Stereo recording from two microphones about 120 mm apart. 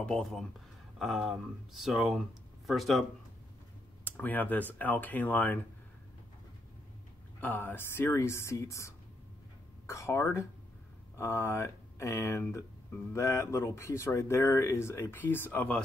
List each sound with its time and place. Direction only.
0.0 s speech: 5° left (ahead or behind)
4.0 s speech: 15° left (ahead or behind)
7.3 s speech: 15° left (ahead or behind)